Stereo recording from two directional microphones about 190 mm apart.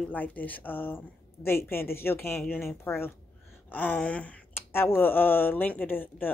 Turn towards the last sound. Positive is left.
turn(degrees=10)  # may be behind; listen again after turning